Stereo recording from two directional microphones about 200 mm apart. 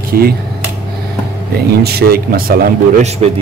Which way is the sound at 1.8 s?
50° right (ahead or behind).